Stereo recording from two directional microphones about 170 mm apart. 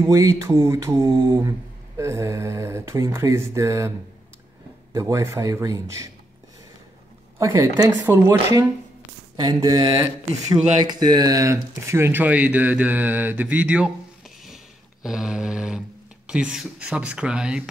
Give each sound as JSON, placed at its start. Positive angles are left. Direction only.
{"t": 0.0, "sound": "a sound", "side_deg": -20}
{"t": 2.0, "sound": "speech", "side_deg": -15}
{"t": 4.9, "sound": "speech", "side_deg": -15}
{"t": 7.3, "sound": "speech", "side_deg": -15}
{"t": 15.0, "sound": "speech", "side_deg": -5}